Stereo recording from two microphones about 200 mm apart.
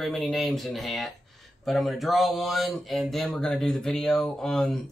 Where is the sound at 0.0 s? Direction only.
Centre (ahead or behind).